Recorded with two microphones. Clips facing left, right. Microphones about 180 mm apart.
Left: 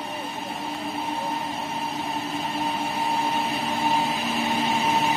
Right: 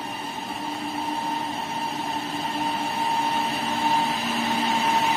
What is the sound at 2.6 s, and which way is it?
Printer, centre (ahead or behind).